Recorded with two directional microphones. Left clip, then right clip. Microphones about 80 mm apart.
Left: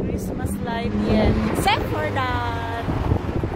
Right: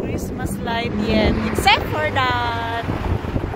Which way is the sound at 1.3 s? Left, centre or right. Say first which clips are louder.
Right 4 dB; right.